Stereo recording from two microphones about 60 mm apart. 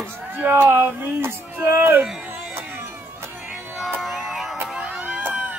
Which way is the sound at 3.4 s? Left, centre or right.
Centre.